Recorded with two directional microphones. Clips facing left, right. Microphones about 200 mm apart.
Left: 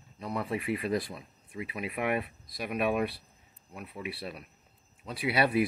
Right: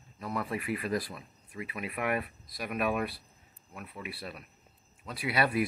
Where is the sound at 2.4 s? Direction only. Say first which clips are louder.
Left 2 dB; centre (ahead or behind).